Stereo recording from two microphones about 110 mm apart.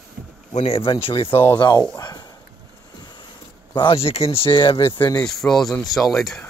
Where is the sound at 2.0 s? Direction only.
40° left (ahead or behind).